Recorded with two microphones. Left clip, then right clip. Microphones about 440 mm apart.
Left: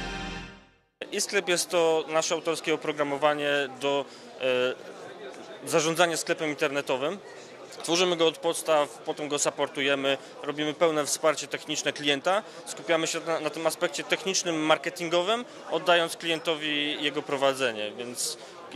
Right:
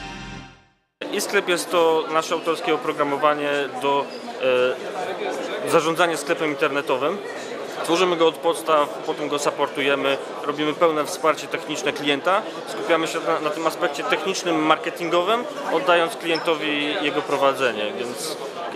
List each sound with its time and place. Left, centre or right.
1.1 s speech: left